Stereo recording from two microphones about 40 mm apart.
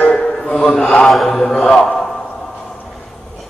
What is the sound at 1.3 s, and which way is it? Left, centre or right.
Mantra, centre.